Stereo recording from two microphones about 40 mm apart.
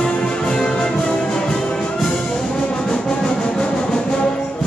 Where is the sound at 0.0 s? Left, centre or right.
Left.